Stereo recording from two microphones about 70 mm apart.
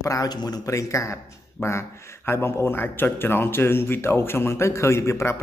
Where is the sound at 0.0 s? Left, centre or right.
Left.